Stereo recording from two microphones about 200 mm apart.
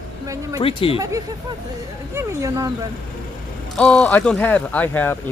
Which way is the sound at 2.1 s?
15° right (ahead or behind).